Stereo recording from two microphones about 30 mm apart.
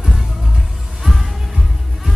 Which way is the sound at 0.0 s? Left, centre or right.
Right.